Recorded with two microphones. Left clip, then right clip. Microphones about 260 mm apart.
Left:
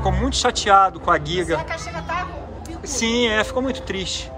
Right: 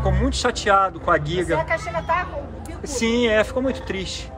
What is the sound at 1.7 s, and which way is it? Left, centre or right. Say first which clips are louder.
Speech: right 4 dB; right.